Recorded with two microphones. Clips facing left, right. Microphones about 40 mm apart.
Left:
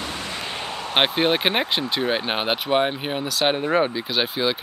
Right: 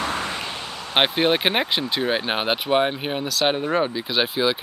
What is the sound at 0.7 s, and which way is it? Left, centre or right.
Basketball bounce, left.